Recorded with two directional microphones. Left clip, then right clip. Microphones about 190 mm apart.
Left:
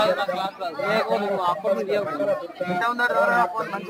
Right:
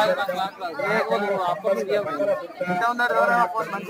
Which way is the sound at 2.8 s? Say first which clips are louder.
Even; 25° left (ahead or behind).